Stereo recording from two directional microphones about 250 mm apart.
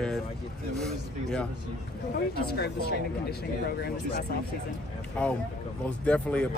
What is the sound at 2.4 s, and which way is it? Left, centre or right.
Speech, left.